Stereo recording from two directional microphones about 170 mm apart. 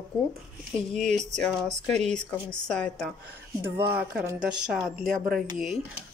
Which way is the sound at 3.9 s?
10° right (ahead or behind).